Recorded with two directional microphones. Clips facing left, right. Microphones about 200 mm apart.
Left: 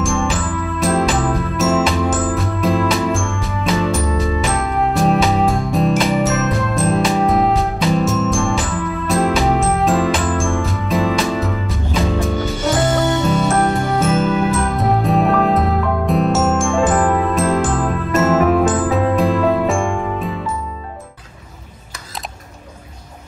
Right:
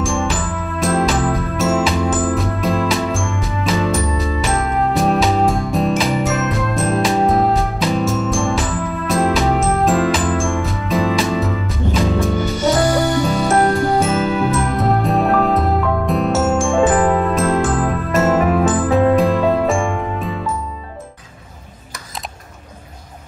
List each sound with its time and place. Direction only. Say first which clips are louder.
0.0 s music: left 1 dB; centre (ahead or behind)
12.8 s music: right 1 dB; 25° left (ahead or behind)
14.0 s music: left 1 dB; centre (ahead or behind)